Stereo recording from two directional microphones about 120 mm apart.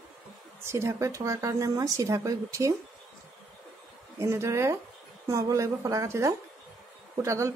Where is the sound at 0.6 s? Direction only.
20° right (ahead or behind).